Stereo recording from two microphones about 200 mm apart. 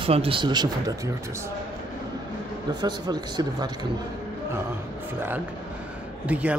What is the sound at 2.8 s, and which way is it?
Speech, 20° right (ahead or behind).